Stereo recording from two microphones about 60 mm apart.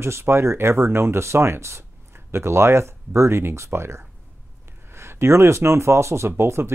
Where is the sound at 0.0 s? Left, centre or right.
Right.